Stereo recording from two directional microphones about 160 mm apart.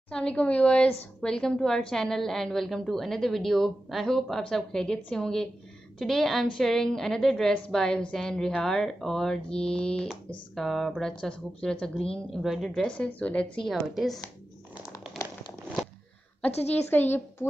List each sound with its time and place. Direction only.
0.1 s a woman's voice: 5° left (ahead or behind)
16.9 s a woman's voice: 10° left (ahead or behind)